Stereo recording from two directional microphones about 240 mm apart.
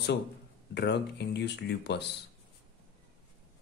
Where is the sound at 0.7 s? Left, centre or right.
Left.